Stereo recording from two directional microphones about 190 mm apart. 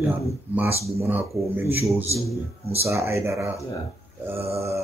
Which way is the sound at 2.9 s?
15° right (ahead or behind).